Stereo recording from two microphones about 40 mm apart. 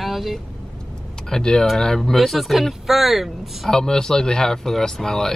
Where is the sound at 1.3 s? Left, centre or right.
Centre.